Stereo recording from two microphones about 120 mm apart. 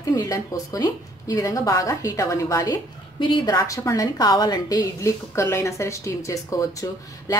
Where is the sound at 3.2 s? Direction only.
45° left (ahead or behind).